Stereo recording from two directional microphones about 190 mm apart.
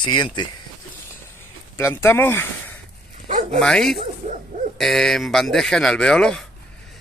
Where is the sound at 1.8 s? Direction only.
15° left (ahead or behind).